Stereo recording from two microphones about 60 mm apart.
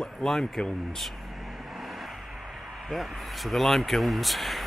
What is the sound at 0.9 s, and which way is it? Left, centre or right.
Vehicle, centre.